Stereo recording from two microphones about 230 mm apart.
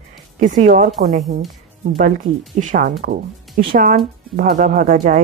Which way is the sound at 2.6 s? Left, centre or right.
Right.